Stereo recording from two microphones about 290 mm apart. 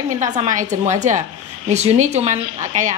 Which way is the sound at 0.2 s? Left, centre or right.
Right.